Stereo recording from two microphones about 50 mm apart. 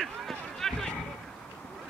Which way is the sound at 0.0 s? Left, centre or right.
Centre.